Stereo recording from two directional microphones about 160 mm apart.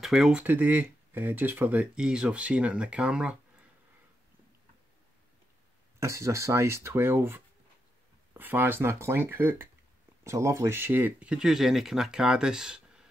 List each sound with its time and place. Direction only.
0.0 s speech: centre (ahead or behind)
5.9 s speech: 20° right (ahead or behind)